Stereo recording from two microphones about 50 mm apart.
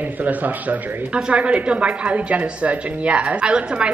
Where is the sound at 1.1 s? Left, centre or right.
Right.